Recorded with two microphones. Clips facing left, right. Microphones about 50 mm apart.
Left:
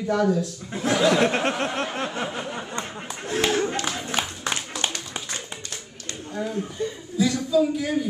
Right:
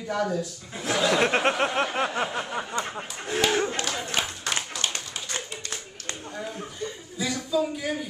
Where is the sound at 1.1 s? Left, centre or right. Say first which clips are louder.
Left 1 dB; centre.